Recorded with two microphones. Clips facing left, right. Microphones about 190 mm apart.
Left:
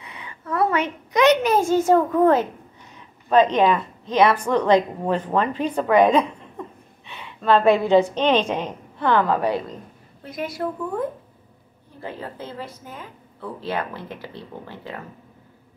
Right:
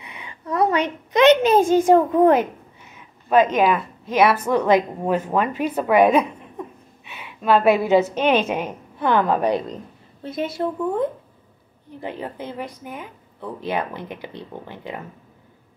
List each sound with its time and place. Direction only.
0.0 s a child's voice: 15° right (ahead or behind)
3.5 s a woman's voice: 5° right (ahead or behind)